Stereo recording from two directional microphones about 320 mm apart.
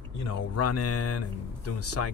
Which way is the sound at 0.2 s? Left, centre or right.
Left.